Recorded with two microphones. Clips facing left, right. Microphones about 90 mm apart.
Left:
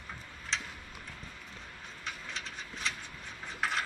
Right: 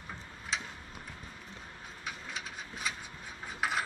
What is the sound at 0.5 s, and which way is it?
Tick-tock, 5° right (ahead or behind).